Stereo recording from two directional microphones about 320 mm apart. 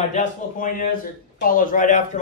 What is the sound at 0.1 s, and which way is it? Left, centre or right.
Speech, left.